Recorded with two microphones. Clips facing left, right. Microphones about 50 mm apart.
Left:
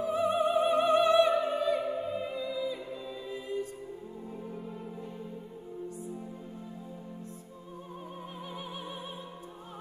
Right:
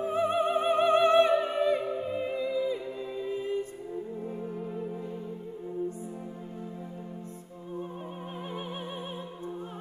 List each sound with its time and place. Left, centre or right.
0.0 s opera: right
1.8 s music: right